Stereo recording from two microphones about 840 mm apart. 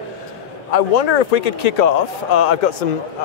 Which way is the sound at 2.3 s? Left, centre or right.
Left.